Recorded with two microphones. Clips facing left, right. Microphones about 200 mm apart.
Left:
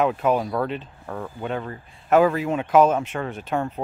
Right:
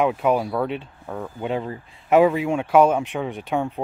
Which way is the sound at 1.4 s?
20° right (ahead or behind).